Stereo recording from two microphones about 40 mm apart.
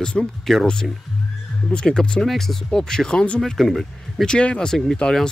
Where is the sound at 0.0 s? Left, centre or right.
Left.